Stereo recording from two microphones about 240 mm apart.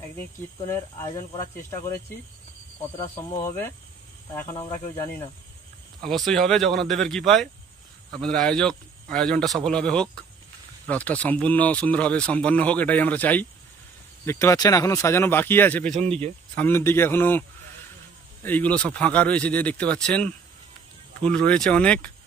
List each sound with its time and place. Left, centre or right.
0.6 s speech: centre
3.0 s speech: centre
6.0 s a man's voice: centre
15.9 s speech: right
16.5 s a man's voice: centre